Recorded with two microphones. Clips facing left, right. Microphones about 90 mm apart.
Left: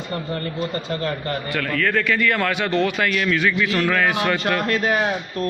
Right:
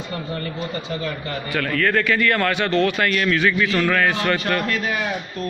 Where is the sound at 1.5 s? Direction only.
Centre (ahead or behind).